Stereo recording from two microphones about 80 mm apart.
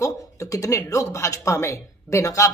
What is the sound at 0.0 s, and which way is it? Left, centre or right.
Speech, left.